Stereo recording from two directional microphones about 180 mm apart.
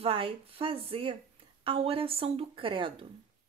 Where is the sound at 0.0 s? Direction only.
30° right (ahead or behind).